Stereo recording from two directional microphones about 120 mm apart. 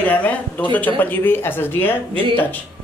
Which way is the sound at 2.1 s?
50° right (ahead or behind).